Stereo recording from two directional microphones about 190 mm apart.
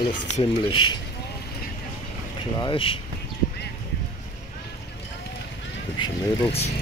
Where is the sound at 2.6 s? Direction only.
25° left (ahead or behind).